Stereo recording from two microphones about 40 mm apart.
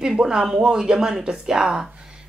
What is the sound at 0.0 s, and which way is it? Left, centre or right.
Speech, centre.